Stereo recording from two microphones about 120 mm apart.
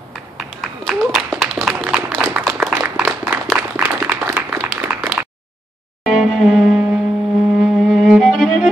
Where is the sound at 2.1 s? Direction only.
15° right (ahead or behind).